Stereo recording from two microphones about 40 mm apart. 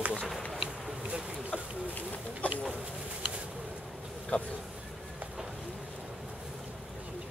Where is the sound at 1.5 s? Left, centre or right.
Left.